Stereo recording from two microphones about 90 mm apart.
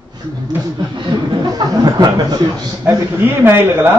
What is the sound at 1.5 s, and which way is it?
Speech, 45° right (ahead or behind).